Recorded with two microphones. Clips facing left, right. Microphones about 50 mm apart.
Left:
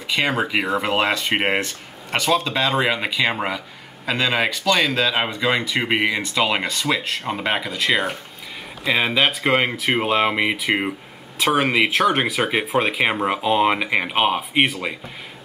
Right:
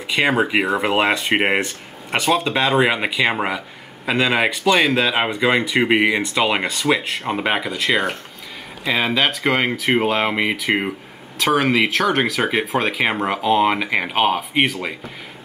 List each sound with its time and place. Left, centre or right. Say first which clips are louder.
0.1 s speech: right 3 dB; centre
1.6 s speech: right 2 dB; right
8.8 s speech: even; centre